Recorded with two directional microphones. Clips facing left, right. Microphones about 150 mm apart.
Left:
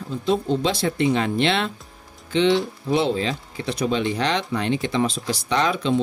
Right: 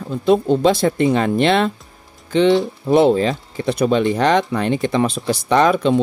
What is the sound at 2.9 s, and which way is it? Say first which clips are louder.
Speech: right 8 dB; 50° right (ahead or behind).